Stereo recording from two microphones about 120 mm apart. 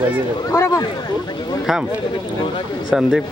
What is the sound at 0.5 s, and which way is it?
Speech, 25° left (ahead or behind).